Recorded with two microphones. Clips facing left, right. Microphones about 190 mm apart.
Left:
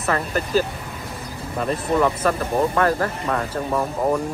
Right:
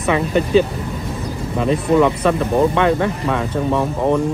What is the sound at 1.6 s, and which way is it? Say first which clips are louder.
Speech: right 5 dB; centre (ahead or behind).